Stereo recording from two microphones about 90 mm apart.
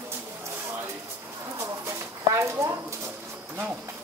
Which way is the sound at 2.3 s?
35° right (ahead or behind).